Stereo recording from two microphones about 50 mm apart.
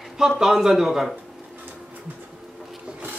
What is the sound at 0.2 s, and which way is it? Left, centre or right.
Speech, centre.